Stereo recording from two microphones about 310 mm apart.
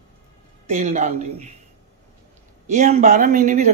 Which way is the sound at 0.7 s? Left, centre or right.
Right.